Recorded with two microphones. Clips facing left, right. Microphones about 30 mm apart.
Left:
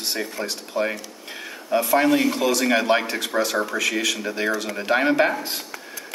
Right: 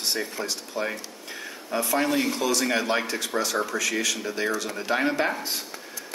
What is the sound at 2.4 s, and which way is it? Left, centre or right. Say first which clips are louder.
Speech: left 4 dB; left.